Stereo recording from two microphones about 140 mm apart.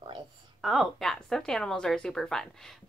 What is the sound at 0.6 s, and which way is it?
A woman's voice, centre (ahead or behind).